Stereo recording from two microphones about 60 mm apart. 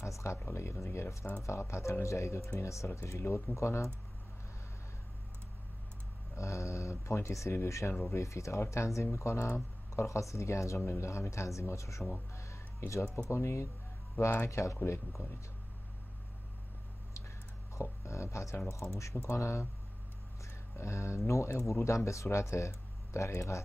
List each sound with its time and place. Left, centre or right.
0.0 s a sound: left
0.5 s speech: left
6.3 s speech: left
12.4 s a sound: left
13.3 s speech: left
17.7 s speech: left